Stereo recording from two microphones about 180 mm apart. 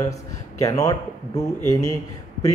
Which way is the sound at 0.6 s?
20° left (ahead or behind).